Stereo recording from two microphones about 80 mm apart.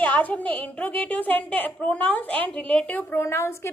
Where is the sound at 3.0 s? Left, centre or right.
Left.